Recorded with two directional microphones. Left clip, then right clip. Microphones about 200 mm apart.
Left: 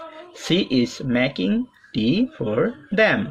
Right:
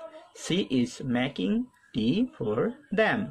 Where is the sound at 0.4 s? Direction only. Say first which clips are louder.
Left 7 dB; 20° right (ahead or behind).